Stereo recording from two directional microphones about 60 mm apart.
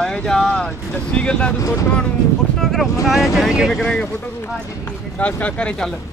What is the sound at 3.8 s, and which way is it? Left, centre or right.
Speech, centre.